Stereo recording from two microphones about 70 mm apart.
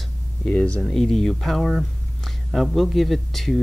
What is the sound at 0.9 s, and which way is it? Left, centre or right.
Speech, centre.